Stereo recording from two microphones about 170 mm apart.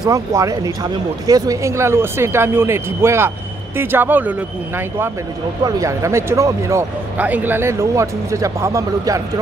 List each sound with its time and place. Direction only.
0.0 s speech: 20° right (ahead or behind)